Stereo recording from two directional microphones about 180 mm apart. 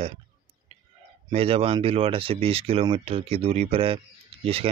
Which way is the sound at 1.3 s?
35° right (ahead or behind).